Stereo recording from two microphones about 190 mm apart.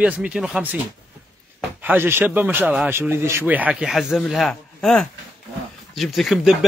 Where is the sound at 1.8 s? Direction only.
10° right (ahead or behind).